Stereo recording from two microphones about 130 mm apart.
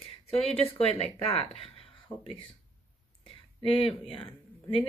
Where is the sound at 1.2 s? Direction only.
45° left (ahead or behind).